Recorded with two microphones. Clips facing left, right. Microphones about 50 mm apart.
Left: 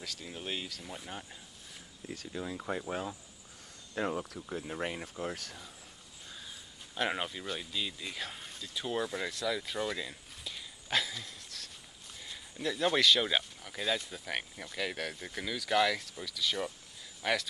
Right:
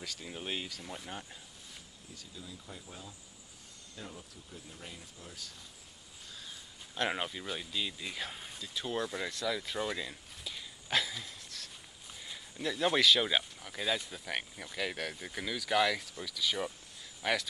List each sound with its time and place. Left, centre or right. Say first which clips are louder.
0.0 s speech: even; centre
2.0 s speech: left 11 dB; left
7.0 s speech: left 1 dB; centre